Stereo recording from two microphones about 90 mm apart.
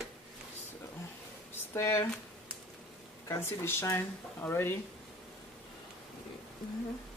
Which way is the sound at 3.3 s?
30° left (ahead or behind).